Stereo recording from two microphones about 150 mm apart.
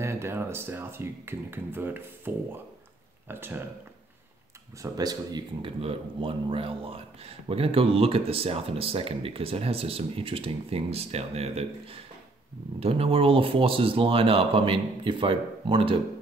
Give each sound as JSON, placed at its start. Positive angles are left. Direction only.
{"t": 0.0, "sound": "speech", "side_deg": -15}
{"t": 4.9, "sound": "speech", "side_deg": -25}